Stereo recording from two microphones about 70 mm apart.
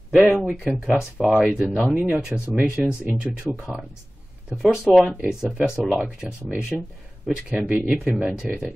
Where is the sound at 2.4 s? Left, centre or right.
Right.